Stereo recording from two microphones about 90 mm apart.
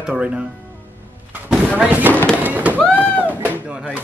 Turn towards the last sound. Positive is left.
turn(degrees=-15)  # may be behind; listen again after turning